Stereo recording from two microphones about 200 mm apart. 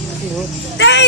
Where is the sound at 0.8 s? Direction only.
65° left (ahead or behind).